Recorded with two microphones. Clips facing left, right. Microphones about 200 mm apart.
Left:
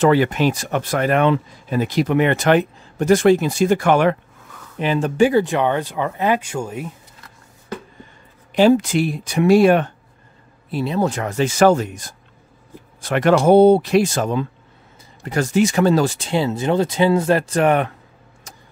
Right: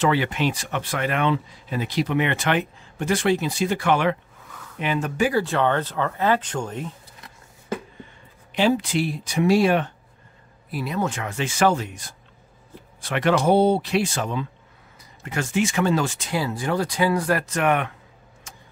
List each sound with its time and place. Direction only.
0.0 s speech: 45° left (ahead or behind)
4.7 s speech: 30° left (ahead or behind); by 6.9 s 10° left (ahead or behind)
8.5 s speech: 45° left (ahead or behind)
10.7 s speech: 25° left (ahead or behind)
18.5 s a sound: 40° left (ahead or behind)